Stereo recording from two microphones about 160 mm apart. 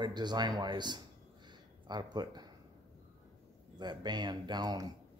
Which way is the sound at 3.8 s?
25° right (ahead or behind).